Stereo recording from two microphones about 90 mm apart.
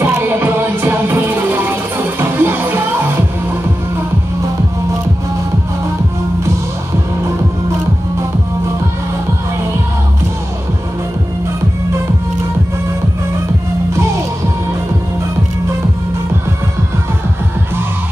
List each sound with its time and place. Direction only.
0.0 s music: 25° right (ahead or behind)